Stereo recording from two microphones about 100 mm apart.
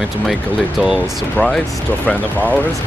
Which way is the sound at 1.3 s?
5° left (ahead or behind).